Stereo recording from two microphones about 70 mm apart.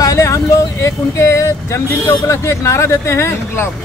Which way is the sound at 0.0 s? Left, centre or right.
Left.